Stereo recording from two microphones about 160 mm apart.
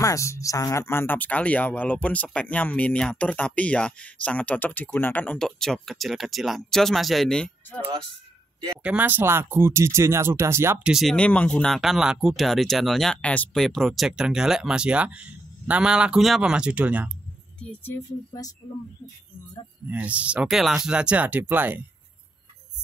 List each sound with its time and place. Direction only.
0.0 s speech: 20° left (ahead or behind)
8.8 s speech: 10° right (ahead or behind)
17.6 s speech: 5° left (ahead or behind)
19.9 s speech: 10° right (ahead or behind)